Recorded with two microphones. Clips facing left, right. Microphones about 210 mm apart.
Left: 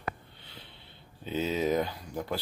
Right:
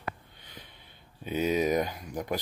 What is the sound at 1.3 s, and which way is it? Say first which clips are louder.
Speech: right 2 dB; 15° right (ahead or behind).